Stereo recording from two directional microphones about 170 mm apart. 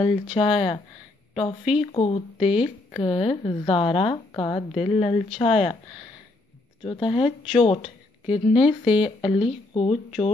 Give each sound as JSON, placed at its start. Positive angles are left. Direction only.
{"t": 0.0, "sound": "speech", "side_deg": 30}
{"t": 6.8, "sound": "speech", "side_deg": 30}